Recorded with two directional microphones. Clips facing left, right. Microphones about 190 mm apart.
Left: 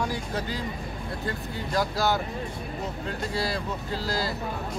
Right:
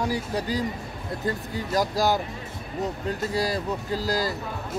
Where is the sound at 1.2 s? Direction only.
40° right (ahead or behind).